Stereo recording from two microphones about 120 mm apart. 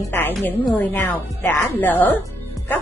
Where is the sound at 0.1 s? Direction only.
15° left (ahead or behind).